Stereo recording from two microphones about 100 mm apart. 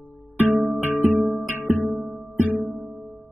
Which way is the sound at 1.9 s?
40° right (ahead or behind).